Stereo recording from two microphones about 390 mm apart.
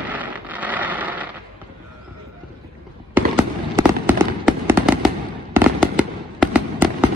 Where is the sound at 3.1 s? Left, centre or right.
Centre.